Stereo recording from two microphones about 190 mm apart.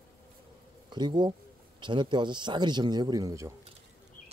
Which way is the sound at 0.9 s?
25° right (ahead or behind).